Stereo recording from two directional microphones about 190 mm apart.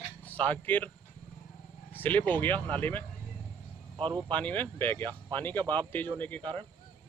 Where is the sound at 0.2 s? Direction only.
10° left (ahead or behind).